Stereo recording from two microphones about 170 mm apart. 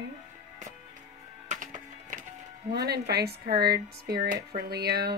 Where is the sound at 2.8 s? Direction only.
75° right (ahead or behind).